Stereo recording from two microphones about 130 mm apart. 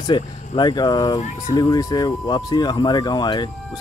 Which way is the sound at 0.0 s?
35° left (ahead or behind).